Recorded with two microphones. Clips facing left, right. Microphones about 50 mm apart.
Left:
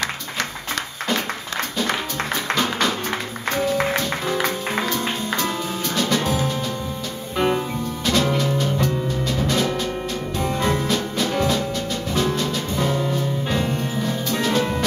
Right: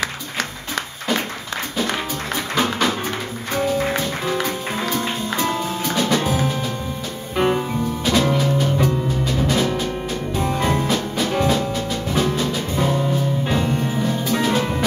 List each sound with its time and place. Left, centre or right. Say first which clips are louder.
2.5 s music: right 2 dB; centre
5.5 s music: right 3 dB; centre
7.3 s music: right 2 dB; centre